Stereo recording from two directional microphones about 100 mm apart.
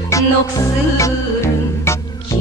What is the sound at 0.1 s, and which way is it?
Music, 30° left (ahead or behind).